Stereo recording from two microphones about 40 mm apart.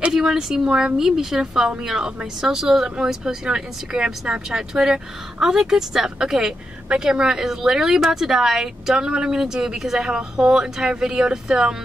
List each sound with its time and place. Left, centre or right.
0.1 s speech: centre